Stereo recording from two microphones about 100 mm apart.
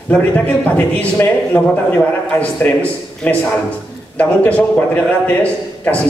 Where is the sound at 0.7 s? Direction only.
15° left (ahead or behind).